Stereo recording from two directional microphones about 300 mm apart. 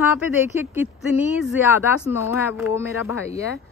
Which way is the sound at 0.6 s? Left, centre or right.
Centre.